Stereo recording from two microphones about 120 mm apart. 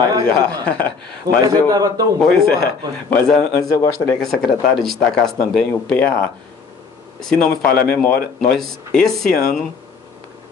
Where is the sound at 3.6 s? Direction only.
25° left (ahead or behind).